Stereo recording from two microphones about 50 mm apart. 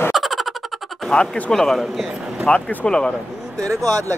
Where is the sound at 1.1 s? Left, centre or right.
Centre.